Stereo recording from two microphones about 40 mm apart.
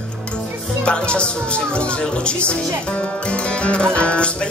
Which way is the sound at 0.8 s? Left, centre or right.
Left.